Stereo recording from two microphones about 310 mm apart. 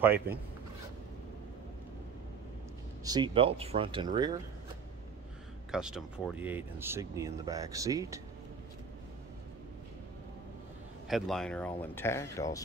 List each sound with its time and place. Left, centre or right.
0.0 s speech: centre
3.0 s speech: centre
5.7 s speech: centre
11.1 s speech: centre